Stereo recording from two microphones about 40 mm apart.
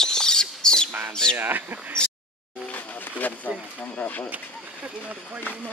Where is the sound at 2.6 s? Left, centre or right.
Left.